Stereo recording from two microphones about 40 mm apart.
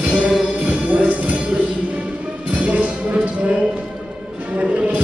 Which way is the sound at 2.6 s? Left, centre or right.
Right.